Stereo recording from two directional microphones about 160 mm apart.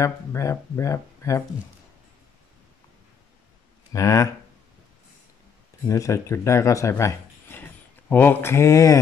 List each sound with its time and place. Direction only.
0.0 s speech: 20° left (ahead or behind)
3.9 s speech: 20° left (ahead or behind)
5.9 s speech: 20° left (ahead or behind)
8.1 s mantra: 10° left (ahead or behind)